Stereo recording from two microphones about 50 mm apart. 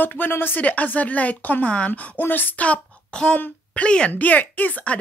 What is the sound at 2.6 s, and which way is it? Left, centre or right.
Speech, left.